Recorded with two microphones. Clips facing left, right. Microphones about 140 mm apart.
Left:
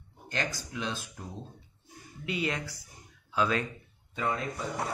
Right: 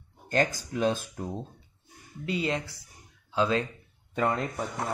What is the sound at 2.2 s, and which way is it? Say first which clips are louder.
Speech: right 3 dB; 30° right (ahead or behind).